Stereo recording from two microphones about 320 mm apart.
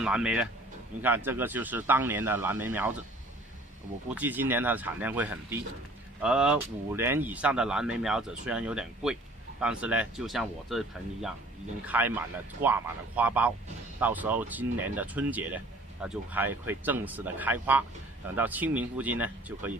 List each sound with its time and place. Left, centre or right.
0.0 s speech: centre
4.1 s speech: centre